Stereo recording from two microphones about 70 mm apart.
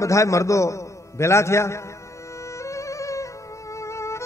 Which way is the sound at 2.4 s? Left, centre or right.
Left.